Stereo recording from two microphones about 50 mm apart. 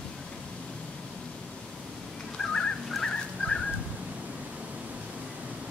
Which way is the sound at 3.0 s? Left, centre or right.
Centre.